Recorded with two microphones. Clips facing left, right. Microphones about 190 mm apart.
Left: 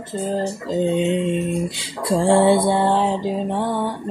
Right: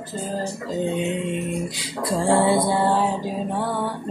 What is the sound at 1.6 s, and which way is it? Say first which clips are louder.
Music: left 3 dB; 30° left (ahead or behind).